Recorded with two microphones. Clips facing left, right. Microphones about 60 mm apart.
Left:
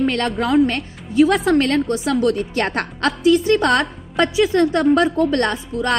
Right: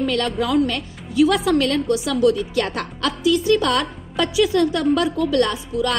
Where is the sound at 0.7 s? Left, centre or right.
Left.